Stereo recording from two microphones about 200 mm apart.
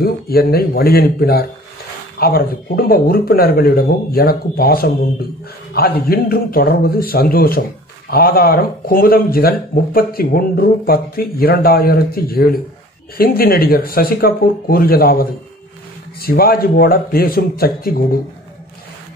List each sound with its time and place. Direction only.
0.0 s speech: 50° left (ahead or behind)